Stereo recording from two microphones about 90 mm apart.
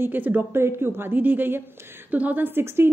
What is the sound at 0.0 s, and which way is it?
A woman's voice, 20° right (ahead or behind).